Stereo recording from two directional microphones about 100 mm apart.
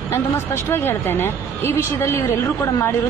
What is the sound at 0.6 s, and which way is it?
A woman's voice, 25° left (ahead or behind).